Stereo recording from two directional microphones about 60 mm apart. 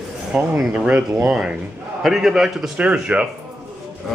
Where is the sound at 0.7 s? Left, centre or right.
Right.